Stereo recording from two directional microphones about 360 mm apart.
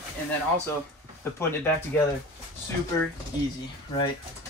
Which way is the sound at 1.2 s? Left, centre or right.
Centre.